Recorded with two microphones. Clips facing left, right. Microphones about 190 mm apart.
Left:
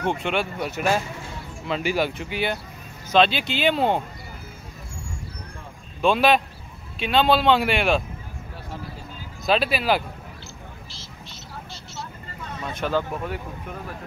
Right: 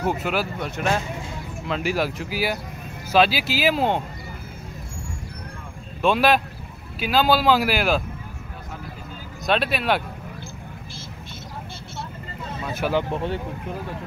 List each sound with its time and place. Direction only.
0.0 s speech: 5° right (ahead or behind)
5.9 s speech: centre (ahead or behind)
9.5 s speech: centre (ahead or behind)
12.6 s speech: 10° right (ahead or behind)
13.1 s speech: 30° right (ahead or behind)